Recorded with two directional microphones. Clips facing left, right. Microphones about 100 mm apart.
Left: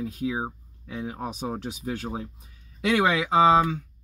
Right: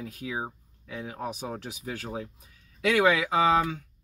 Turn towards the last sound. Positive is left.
turn(degrees=25)  # may be behind; listen again after turning